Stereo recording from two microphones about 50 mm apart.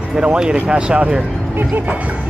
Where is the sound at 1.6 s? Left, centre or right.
Right.